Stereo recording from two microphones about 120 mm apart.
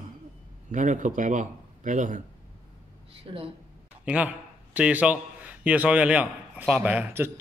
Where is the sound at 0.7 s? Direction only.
90° right.